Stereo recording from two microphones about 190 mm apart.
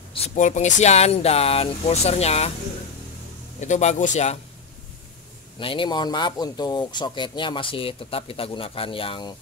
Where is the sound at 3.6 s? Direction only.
40° left (ahead or behind).